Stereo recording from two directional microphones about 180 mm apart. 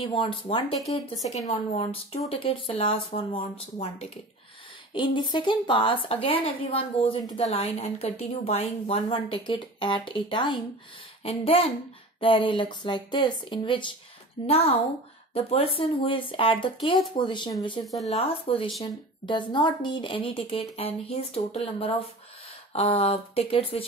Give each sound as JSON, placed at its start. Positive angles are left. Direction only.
{"t": 0.0, "sound": "a woman's voice", "side_deg": 30}
{"t": 17.8, "sound": "speech", "side_deg": 0}
{"t": 18.1, "sound": "a woman's voice", "side_deg": 30}